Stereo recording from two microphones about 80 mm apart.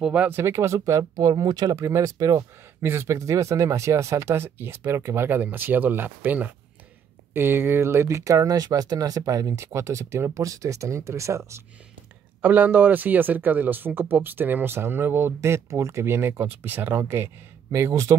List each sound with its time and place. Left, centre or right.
0.0 s speech: centre
0.3 s speech: right
1.2 s speech: right
1.8 s speech: right
2.8 s speech: right
12.4 s speech: centre; by 18.1 s right